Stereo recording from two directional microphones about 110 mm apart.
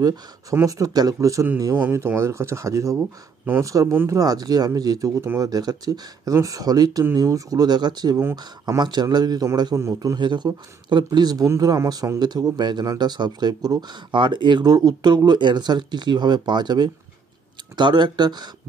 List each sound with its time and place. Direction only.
0.0 s speech: 35° right (ahead or behind)
1.8 s speech: 20° right (ahead or behind)
4.2 s speech: 35° right (ahead or behind)
5.2 s speech: 20° right (ahead or behind)
5.5 s speech: 35° right (ahead or behind)
8.2 s speech: 20° right (ahead or behind)
8.7 s speech: 40° right (ahead or behind)